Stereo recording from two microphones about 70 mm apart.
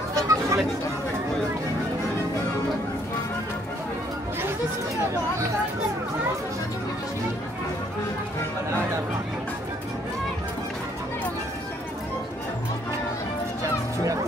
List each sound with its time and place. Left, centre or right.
0.1 s chatter: right